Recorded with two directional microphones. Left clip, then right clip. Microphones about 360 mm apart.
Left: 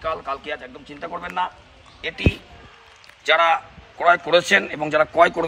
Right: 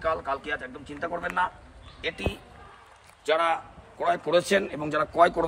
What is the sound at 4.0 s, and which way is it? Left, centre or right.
A man's voice, centre.